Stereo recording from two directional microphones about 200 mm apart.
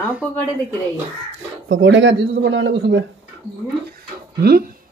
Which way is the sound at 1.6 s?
70° right (ahead or behind).